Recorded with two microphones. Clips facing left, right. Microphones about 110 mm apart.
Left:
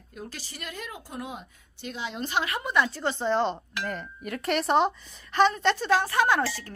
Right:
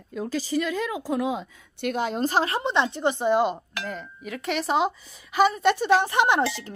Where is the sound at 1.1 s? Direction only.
90° right.